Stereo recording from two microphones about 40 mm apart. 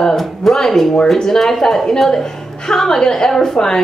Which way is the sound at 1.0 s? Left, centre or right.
Centre.